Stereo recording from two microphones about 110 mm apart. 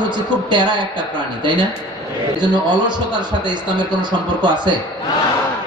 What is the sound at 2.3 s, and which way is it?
Speech, 45° right (ahead or behind).